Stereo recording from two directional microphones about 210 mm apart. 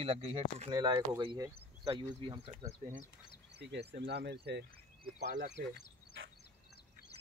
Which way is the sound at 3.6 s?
55° right (ahead or behind).